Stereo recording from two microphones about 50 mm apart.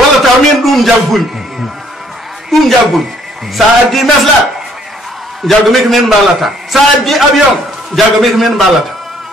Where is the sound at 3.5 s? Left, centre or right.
Centre.